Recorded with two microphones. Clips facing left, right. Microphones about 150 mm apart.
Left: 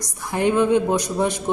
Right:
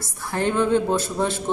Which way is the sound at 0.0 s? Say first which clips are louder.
Left 3 dB; 15° left (ahead or behind).